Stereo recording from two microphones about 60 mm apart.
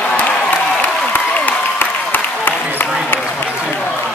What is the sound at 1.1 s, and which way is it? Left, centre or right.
Applause, left.